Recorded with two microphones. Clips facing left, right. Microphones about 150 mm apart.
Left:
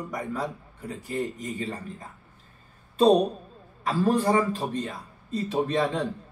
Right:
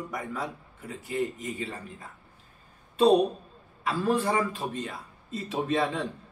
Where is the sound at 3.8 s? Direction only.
40° left (ahead or behind).